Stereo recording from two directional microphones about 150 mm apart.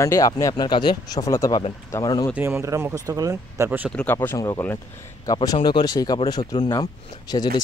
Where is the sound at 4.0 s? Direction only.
15° left (ahead or behind).